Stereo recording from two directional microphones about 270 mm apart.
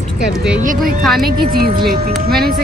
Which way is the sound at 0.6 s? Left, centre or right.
Right.